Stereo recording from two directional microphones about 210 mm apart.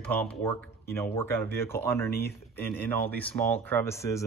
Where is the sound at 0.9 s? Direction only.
10° left (ahead or behind).